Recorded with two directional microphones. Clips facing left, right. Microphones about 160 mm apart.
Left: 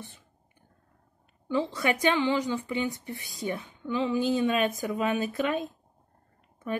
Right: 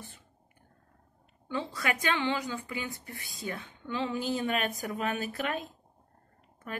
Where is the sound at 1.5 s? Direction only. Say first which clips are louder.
Left 6 dB; 20° left (ahead or behind).